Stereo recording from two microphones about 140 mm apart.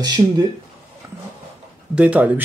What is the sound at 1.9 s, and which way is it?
Speech, 10° right (ahead or behind).